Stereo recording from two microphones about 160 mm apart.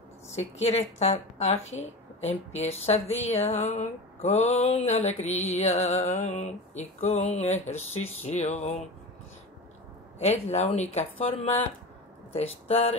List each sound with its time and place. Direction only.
0.4 s a woman's voice: 45° left (ahead or behind)
10.5 s speech: 40° left (ahead or behind)